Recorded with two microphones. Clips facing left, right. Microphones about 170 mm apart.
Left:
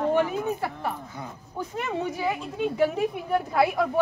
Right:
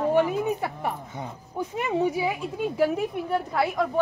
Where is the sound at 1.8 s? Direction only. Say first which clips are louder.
Right 5 dB; 10° right (ahead or behind).